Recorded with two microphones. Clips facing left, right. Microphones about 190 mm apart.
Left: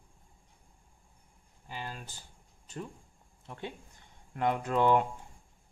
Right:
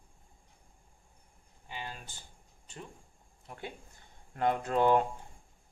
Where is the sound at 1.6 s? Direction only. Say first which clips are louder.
Left 2 dB; 40° left (ahead or behind).